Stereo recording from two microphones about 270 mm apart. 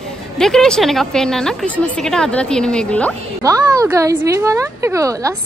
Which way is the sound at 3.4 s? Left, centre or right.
Centre.